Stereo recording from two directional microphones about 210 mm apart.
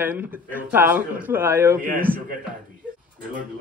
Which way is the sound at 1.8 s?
40° right (ahead or behind).